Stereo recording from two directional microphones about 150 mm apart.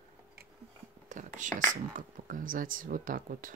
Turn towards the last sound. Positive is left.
turn(degrees=-65)  # may be behind; listen again after turning